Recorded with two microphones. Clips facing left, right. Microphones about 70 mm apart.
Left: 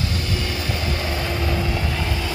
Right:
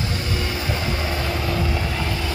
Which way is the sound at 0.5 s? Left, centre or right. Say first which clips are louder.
Right 1 dB; right.